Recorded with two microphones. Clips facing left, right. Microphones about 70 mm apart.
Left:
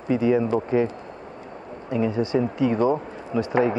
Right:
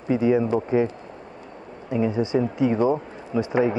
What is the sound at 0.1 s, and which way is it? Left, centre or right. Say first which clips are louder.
A man's voice: even; centre.